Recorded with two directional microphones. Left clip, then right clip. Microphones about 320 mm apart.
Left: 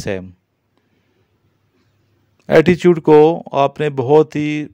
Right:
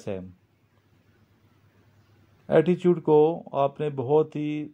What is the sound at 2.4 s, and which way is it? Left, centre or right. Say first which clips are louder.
Speech: left 10 dB; left.